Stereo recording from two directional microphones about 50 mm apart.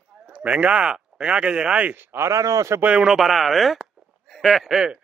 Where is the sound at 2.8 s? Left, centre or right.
Centre.